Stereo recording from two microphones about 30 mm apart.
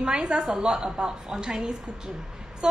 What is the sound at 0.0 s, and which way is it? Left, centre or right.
A woman's voice, right.